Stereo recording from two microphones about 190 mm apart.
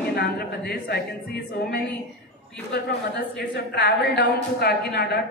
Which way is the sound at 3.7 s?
60° left (ahead or behind).